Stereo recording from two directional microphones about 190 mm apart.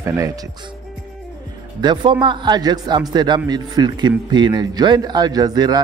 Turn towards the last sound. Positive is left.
turn(degrees=-20)  # may be behind; listen again after turning